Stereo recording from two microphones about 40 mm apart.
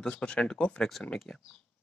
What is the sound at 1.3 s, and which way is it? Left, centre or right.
Speech, centre.